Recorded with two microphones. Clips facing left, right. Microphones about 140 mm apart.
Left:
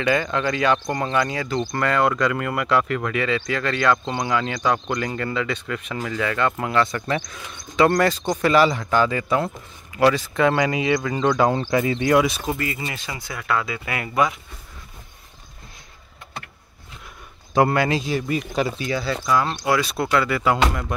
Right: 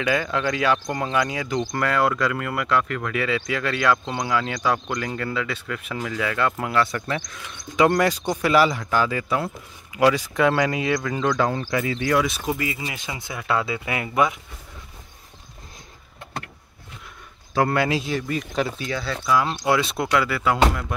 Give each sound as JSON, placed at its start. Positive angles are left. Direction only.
{"t": 0.0, "sound": "speech", "side_deg": -5}
{"t": 7.7, "sound": "speech", "side_deg": -10}
{"t": 11.5, "sound": "speech", "side_deg": 30}
{"t": 12.3, "sound": "speech", "side_deg": -5}
{"t": 13.0, "sound": "speech", "side_deg": -20}
{"t": 17.6, "sound": "speech", "side_deg": 0}
{"t": 18.3, "sound": "speech", "side_deg": 10}
{"t": 19.6, "sound": "speech", "side_deg": -25}
{"t": 20.2, "sound": "speech", "side_deg": 0}